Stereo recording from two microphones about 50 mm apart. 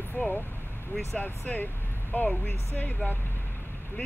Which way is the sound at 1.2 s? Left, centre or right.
Left.